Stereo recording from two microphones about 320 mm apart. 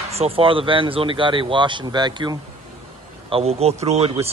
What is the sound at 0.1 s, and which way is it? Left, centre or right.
Speech, centre.